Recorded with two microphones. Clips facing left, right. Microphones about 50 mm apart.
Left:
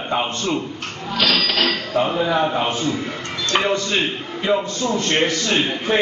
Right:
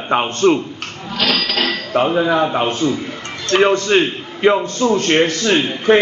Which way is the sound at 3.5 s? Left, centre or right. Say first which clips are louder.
Right 7 dB; right.